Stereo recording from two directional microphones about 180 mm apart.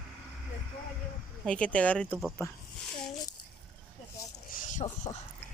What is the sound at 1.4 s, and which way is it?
Speech, 5° left (ahead or behind).